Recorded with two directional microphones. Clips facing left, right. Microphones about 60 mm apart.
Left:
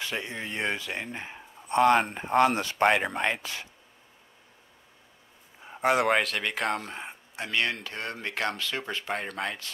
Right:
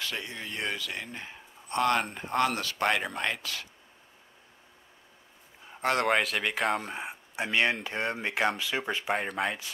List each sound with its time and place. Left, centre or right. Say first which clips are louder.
0.0 s speech: left 3 dB; left
5.7 s a man's voice: left 3 dB; centre